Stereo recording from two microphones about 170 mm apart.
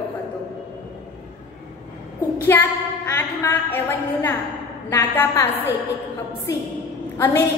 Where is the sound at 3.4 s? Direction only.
10° left (ahead or behind).